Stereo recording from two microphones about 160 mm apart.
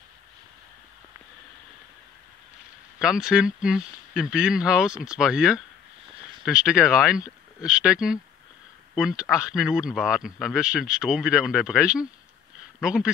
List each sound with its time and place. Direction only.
3.0 s a man's voice: 5° right (ahead or behind)